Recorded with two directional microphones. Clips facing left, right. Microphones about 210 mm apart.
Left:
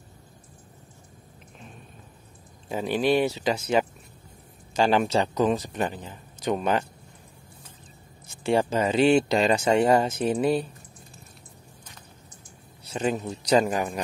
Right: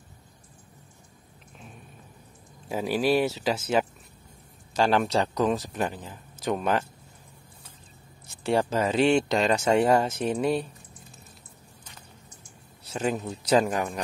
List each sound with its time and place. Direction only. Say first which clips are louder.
2.7 s speech: left 1 dB; 5° right (ahead or behind)
8.3 s speech: left 2 dB; centre (ahead or behind)
12.8 s speech: left 1 dB; centre (ahead or behind)